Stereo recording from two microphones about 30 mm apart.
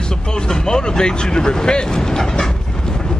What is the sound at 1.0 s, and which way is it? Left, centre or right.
Vehicle, left.